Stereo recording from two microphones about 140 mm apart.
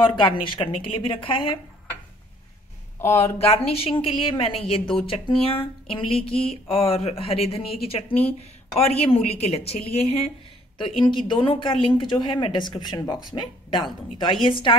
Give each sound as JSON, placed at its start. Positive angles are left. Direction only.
{"t": 0.0, "sound": "speech", "side_deg": 35}
{"t": 3.2, "sound": "a woman's voice", "side_deg": 50}
{"t": 8.7, "sound": "a woman's voice", "side_deg": 45}
{"t": 10.8, "sound": "speech", "side_deg": 35}